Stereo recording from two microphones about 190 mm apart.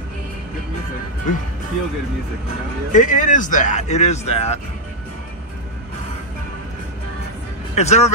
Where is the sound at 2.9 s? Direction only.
40° left (ahead or behind).